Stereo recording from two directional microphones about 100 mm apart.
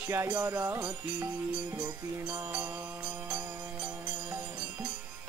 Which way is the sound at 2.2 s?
15° right (ahead or behind).